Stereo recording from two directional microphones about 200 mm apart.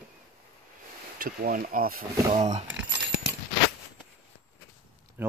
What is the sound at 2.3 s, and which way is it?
Speech, 35° right (ahead or behind).